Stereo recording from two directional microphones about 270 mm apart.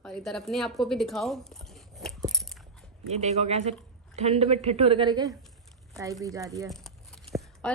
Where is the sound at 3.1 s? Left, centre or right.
Right.